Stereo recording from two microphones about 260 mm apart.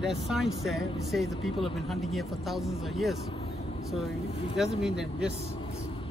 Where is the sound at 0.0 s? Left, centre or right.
Centre.